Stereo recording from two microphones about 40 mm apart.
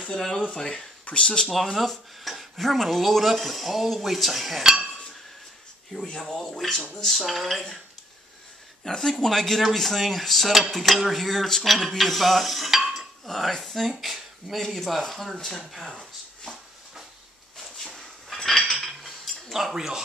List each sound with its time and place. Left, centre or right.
0.1 s speech: centre
1.5 s speech: centre
6.3 s speech: centre
8.8 s speech: centre
18.3 s cutlery: centre
19.7 s speech: centre